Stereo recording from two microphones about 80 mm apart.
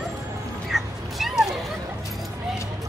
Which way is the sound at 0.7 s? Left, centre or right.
Centre.